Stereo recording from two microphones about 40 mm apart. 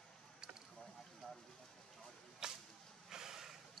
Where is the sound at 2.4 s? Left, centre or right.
Centre.